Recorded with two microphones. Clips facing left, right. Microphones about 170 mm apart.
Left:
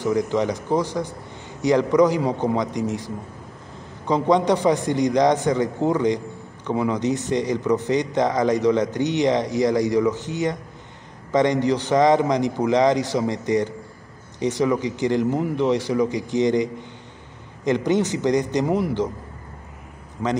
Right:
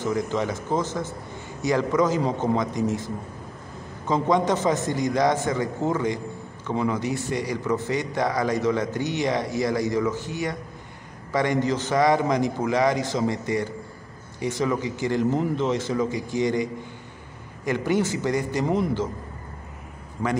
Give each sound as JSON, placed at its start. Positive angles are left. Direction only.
{"t": 0.0, "sound": "a man's voice", "side_deg": 15}